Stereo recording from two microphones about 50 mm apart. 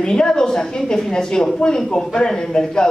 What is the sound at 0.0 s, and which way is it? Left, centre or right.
A man's voice, centre.